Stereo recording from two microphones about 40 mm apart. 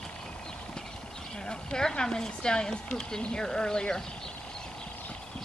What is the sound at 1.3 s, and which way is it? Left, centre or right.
Speech, centre.